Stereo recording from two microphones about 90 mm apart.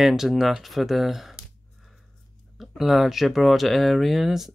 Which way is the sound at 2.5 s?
Centre (ahead or behind).